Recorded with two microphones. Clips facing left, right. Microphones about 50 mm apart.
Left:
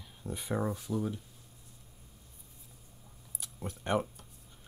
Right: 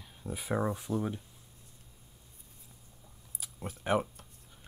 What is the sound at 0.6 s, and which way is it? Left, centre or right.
Speech, right.